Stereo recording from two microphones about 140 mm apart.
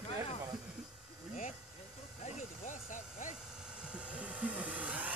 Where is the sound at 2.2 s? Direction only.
70° left (ahead or behind).